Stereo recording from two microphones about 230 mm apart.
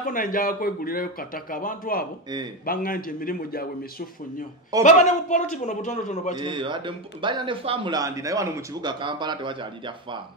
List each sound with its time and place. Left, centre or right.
0.0 s speech: left
4.8 s speech: left
6.4 s speech: right